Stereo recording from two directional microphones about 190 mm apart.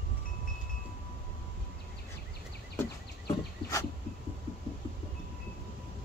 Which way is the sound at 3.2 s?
15° left (ahead or behind).